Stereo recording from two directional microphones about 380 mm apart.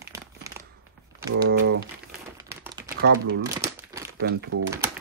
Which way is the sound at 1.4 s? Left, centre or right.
Right.